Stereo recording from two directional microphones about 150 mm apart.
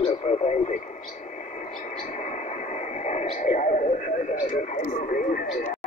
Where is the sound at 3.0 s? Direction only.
50° left (ahead or behind).